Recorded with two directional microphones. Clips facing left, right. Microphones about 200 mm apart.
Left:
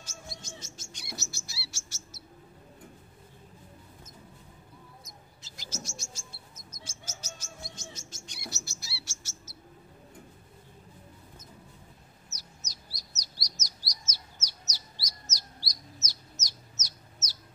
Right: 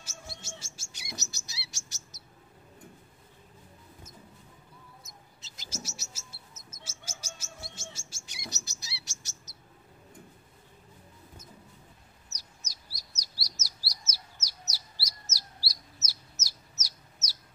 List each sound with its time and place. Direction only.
0.0 s bird: 10° right (ahead or behind)
0.9 s chirp: 15° right (ahead or behind)
5.8 s bird: 5° right (ahead or behind)
6.8 s chirp: 10° right (ahead or behind)
12.4 s chirp: 10° right (ahead or behind)
15.3 s chicken: 5° right (ahead or behind)